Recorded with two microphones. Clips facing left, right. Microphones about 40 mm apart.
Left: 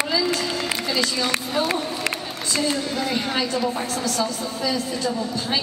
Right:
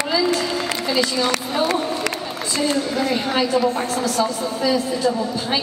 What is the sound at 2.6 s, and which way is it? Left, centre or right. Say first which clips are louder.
A woman's voice: right 4 dB; centre.